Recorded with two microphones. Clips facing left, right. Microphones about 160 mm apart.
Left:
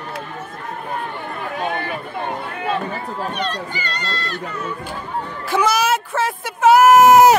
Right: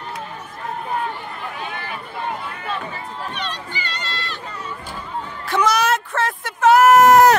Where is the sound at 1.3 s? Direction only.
55° left (ahead or behind).